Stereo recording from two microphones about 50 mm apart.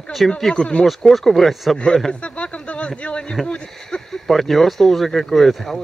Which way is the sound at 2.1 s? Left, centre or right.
Left.